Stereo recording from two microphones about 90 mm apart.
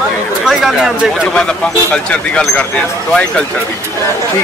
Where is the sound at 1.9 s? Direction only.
15° left (ahead or behind).